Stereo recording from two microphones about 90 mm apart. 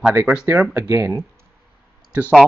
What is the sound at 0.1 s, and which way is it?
Speech, 15° right (ahead or behind).